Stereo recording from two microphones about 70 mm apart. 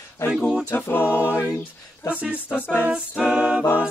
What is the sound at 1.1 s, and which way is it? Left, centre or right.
A capella, left.